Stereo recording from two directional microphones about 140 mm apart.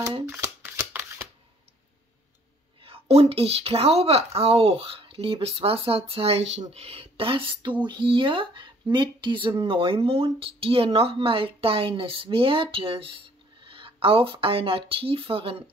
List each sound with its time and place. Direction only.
0.3 s shuffling cards: 20° right (ahead or behind)
2.8 s speech: 45° right (ahead or behind)